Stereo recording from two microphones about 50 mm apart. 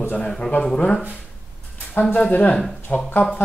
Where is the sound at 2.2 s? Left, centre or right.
Left.